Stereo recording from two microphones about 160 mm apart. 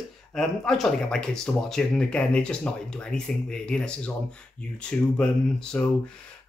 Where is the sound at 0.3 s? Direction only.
5° left (ahead or behind).